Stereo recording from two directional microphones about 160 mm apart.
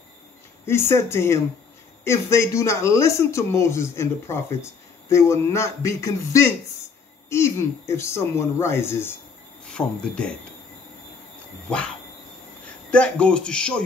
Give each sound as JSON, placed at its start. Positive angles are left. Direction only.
{"t": 0.7, "sound": "speech", "side_deg": 15}
{"t": 12.9, "sound": "speech", "side_deg": 5}